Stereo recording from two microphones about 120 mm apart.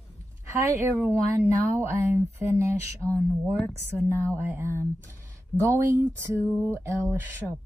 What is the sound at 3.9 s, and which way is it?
Speech, 15° right (ahead or behind).